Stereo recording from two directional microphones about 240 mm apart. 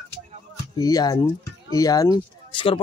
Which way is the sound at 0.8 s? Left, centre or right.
Centre.